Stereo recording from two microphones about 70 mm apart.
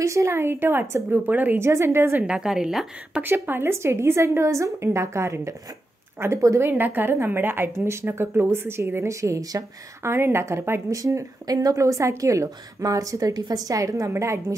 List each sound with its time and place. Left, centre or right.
0.0 s a woman's voice: right
1.6 s a woman's voice: right
2.2 s a woman's voice: centre
3.4 s a woman's voice: right
6.7 s a woman's voice: right
9.2 s a woman's voice: right
10.0 s a woman's voice: right
10.9 s a woman's voice: right